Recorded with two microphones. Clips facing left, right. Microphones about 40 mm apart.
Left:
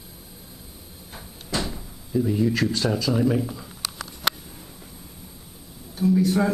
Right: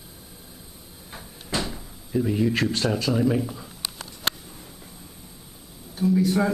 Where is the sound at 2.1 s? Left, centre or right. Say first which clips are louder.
Left 1 dB; centre.